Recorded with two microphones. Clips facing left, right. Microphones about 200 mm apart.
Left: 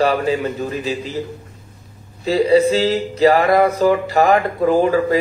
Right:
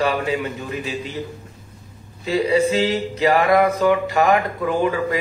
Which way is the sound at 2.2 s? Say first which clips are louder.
Left 5 dB; 35° left (ahead or behind).